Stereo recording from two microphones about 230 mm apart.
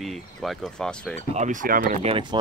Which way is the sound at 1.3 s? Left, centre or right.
Right.